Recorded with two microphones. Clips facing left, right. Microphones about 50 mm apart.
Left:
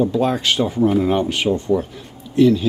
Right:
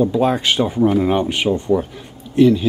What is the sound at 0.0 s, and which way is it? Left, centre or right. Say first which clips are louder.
Speech: right 2 dB; centre.